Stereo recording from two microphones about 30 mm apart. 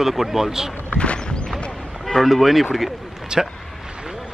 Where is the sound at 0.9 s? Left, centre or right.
Left.